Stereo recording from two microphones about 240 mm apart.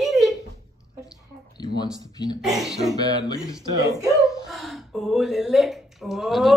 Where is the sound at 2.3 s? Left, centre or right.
Centre.